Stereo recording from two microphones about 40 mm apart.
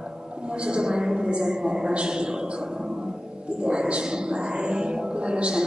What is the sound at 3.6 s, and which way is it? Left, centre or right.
Music, right.